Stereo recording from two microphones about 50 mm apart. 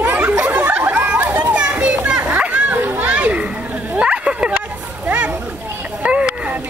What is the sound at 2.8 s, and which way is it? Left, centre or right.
Children playing, right.